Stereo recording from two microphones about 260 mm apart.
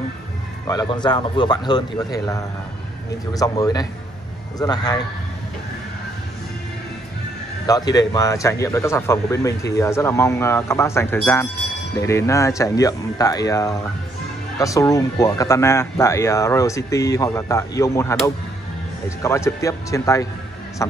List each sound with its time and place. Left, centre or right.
0.7 s speech: centre
7.6 s speech: centre